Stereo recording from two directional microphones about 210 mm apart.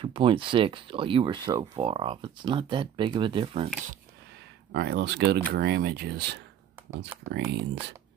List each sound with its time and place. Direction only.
0.0 s speech: 25° right (ahead or behind)
4.7 s speech: 50° right (ahead or behind)
7.2 s speech: 10° right (ahead or behind)